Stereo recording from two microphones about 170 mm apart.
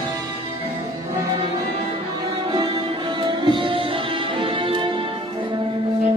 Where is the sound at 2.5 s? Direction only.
25° right (ahead or behind).